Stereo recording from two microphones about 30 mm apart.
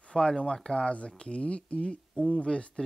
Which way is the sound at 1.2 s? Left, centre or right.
Left.